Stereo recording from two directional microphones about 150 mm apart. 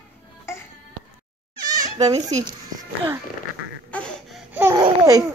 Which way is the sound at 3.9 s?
5° left (ahead or behind).